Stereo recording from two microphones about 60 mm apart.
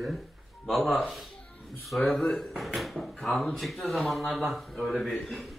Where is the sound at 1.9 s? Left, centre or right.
Left.